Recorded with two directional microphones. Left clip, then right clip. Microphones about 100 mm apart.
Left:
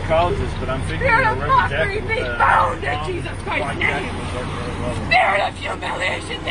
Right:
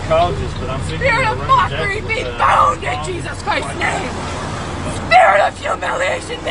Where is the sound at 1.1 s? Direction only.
20° left (ahead or behind).